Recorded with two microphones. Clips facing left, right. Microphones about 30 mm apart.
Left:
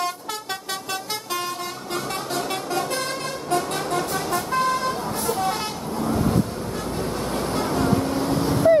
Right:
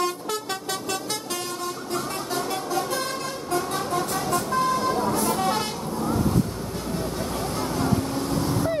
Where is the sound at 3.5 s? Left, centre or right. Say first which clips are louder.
Left 2 dB; left.